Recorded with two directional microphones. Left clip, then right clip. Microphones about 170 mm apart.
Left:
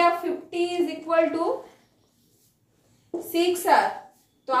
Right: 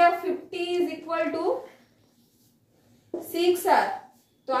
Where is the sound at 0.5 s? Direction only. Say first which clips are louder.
Left 3 dB; centre (ahead or behind).